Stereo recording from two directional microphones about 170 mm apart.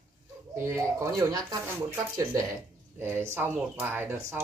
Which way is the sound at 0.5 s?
15° right (ahead or behind).